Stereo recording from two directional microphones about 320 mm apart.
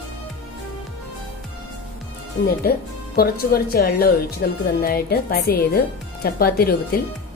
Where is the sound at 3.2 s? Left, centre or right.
Left.